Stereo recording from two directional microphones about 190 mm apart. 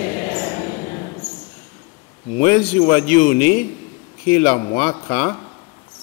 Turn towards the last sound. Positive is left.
turn(degrees=15)  # may be behind; listen again after turning